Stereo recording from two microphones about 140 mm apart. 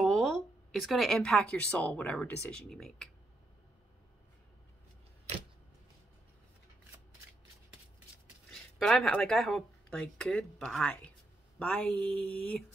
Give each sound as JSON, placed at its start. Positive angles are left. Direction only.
{"t": 0.0, "sound": "speech", "side_deg": 0}
{"t": 8.5, "sound": "speech", "side_deg": 0}
{"t": 11.6, "sound": "a sound", "side_deg": 10}